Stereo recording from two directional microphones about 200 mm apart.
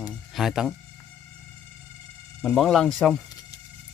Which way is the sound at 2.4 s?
Centre (ahead or behind).